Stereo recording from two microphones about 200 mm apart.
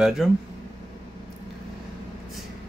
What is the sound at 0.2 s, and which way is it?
Speech, centre (ahead or behind).